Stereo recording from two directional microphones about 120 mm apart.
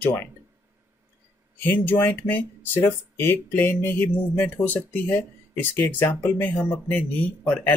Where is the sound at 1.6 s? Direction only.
15° left (ahead or behind).